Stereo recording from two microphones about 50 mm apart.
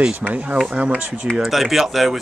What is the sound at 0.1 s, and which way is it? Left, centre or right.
Speech, right.